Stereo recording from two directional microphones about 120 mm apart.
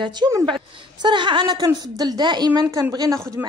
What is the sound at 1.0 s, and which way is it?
A woman's voice, 40° right (ahead or behind).